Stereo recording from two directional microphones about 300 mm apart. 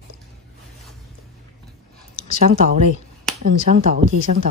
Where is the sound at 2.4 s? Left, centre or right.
Right.